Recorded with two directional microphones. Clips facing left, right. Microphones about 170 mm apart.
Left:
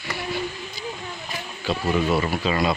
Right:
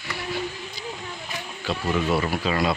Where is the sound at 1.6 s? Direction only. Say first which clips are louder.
Left 2 dB; 5° left (ahead or behind).